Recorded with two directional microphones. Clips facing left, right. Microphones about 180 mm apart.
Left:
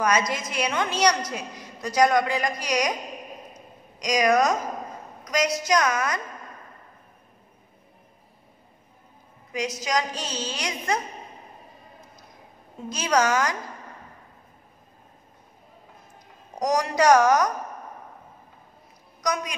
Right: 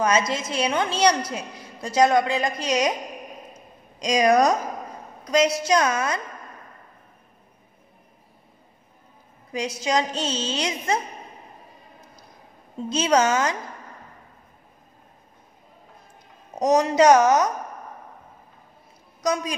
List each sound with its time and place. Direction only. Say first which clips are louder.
0.0 s a woman's voice: right 2 dB; 25° right (ahead or behind)
4.0 s a woman's voice: right 3 dB; 30° right (ahead or behind)
9.5 s a woman's voice: right 2 dB; 30° right (ahead or behind)
12.9 s a woman's voice: right 3 dB; 25° right (ahead or behind)
16.5 s a woman's voice: right 5 dB; 25° right (ahead or behind)
19.2 s a woman's voice: right 3 dB; 25° right (ahead or behind)